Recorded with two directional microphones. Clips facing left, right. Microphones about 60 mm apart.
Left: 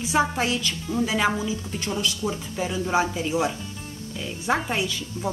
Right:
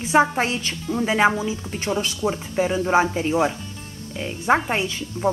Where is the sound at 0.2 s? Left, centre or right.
Right.